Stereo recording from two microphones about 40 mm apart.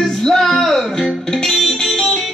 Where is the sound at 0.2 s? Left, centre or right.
Centre.